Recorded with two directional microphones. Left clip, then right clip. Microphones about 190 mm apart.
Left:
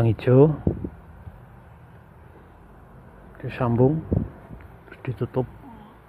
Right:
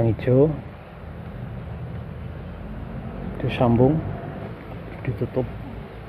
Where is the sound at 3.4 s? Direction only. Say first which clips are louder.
Right 5 dB; 20° left (ahead or behind).